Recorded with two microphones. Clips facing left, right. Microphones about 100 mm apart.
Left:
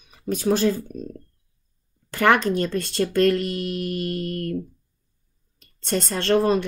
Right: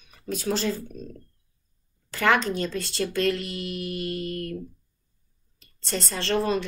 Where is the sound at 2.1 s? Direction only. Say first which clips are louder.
Left 4 dB; 50° left (ahead or behind).